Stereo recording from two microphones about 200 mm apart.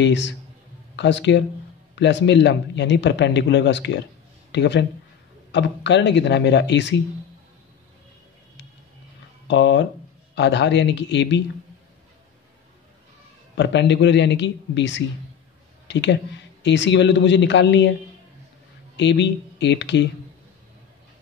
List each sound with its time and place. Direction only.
0.0 s speech: 65° left (ahead or behind)
9.5 s speech: 65° left (ahead or behind)
13.6 s speech: 60° left (ahead or behind)
18.9 s speech: 60° left (ahead or behind)